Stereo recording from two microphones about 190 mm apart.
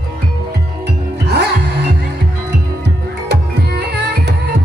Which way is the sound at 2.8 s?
60° right (ahead or behind).